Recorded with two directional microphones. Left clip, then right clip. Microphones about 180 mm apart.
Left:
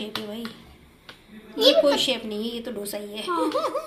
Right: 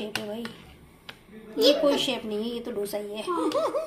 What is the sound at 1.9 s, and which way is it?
A woman's voice, 10° right (ahead or behind).